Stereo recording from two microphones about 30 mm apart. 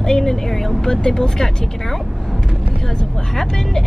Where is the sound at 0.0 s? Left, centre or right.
Centre.